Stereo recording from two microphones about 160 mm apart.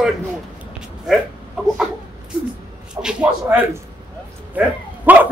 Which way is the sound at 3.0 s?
20° right (ahead or behind).